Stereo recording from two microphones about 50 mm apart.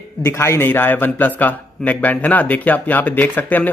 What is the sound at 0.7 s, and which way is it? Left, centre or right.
A man's voice, left.